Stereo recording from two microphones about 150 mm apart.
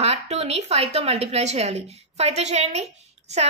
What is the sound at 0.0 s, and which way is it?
A woman's voice, 45° right (ahead or behind).